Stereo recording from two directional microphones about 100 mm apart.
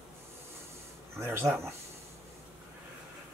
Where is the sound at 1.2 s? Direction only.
25° right (ahead or behind).